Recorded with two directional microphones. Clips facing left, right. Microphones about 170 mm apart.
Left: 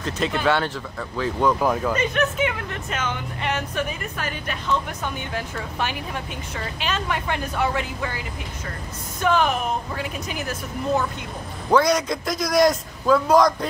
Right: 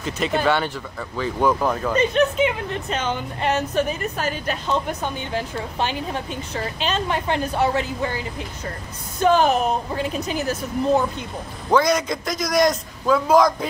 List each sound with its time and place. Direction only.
0.0 s a man's voice: 5° right (ahead or behind)
2.0 s a woman's voice: 25° right (ahead or behind)
9.2 s a woman's voice: 35° right (ahead or behind)
11.7 s a man's voice: centre (ahead or behind)